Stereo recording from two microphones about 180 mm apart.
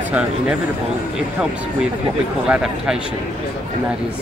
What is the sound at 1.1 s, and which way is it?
Speech, 5° right (ahead or behind).